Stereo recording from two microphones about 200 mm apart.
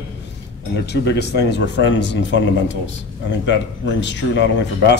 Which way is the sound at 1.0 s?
60° left (ahead or behind).